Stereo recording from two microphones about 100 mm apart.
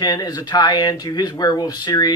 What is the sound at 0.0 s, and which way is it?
Speech, 40° left (ahead or behind).